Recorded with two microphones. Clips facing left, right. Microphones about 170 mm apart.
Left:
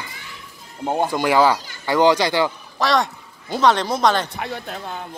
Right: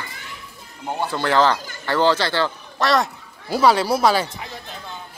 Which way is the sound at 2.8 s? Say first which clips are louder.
Even; centre (ahead or behind).